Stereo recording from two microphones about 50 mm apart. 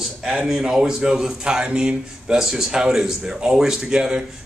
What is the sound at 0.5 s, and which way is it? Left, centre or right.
A man's voice, centre.